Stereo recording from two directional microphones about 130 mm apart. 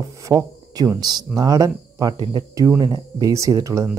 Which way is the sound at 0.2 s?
25° right (ahead or behind).